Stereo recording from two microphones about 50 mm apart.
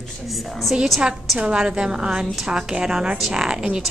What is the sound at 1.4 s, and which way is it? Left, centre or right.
A woman's voice, centre.